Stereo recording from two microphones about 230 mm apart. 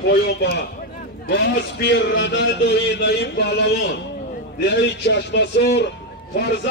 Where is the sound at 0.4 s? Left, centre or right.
Left.